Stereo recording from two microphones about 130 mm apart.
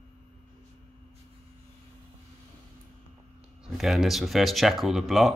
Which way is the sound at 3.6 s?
5° right (ahead or behind).